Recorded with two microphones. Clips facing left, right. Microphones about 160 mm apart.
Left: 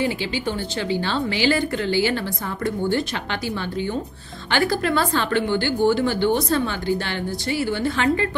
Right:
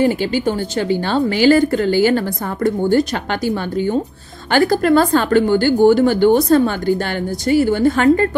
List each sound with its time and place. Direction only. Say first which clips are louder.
0.0 s a woman's voice: right 8 dB; 45° right (ahead or behind)